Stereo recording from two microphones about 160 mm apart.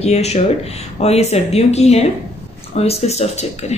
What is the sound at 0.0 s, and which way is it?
Speech, 45° left (ahead or behind).